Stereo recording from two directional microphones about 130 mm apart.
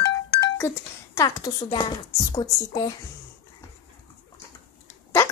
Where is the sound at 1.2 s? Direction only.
30° left (ahead or behind).